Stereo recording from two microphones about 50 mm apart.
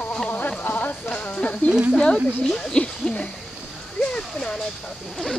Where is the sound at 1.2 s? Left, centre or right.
Left.